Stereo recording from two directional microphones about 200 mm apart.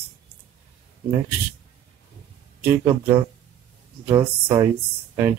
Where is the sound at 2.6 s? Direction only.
10° right (ahead or behind).